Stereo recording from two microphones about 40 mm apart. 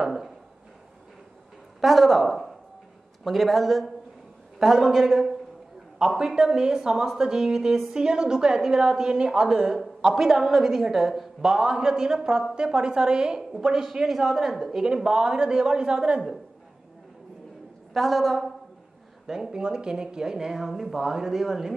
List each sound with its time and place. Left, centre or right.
0.0 s a woman's voice: centre
1.8 s a woman's voice: centre; by 16.2 s right
17.9 s a woman's voice: centre
19.2 s a woman's voice: centre